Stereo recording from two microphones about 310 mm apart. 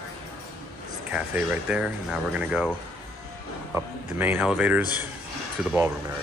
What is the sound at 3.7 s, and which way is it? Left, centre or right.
Speech, centre.